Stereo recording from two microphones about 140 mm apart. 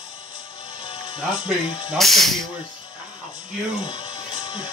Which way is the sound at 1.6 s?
35° left (ahead or behind).